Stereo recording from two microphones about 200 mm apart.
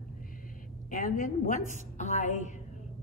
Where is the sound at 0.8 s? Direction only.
45° left (ahead or behind).